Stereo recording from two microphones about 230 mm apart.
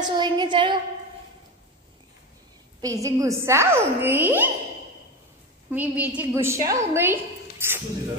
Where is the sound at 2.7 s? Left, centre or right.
Centre.